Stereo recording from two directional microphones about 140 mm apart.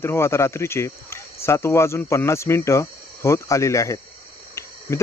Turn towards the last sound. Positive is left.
turn(degrees=20)  # may be behind; listen again after turning